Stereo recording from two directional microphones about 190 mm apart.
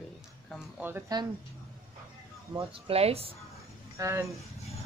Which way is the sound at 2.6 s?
30° right (ahead or behind).